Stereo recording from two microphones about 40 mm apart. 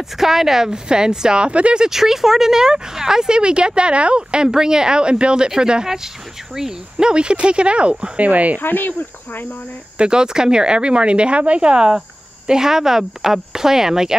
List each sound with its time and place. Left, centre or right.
0.2 s speech: centre; by 1.8 s right
1.8 s speech: centre; by 7.9 s right
8.2 s speech: right
8.5 s speech: left
9.9 s speech: right